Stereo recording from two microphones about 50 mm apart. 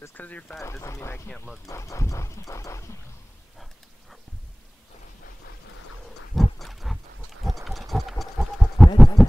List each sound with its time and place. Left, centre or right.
0.1 s speech: left
0.6 s speech: left
1.7 s horse: left
6.3 s a sound: centre